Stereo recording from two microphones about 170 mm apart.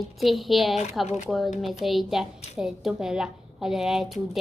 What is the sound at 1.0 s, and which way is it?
Speech, 40° left (ahead or behind).